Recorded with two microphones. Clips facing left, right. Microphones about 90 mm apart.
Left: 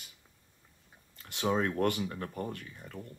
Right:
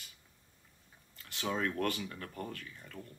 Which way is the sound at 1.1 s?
25° left (ahead or behind).